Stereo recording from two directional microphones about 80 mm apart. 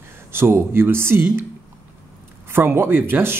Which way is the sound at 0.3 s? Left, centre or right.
Right.